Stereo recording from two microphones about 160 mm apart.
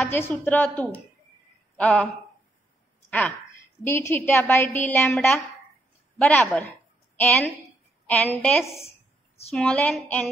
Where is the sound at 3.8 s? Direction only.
15° left (ahead or behind).